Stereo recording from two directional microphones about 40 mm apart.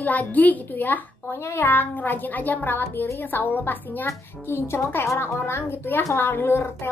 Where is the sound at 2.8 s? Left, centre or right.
Left.